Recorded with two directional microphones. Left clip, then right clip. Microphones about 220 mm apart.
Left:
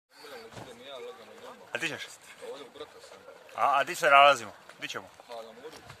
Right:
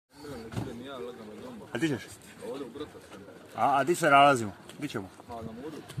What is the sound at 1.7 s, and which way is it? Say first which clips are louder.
Speech: right 2 dB; 20° left (ahead or behind).